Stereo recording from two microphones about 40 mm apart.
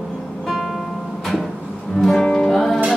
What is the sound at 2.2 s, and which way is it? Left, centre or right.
Music, centre.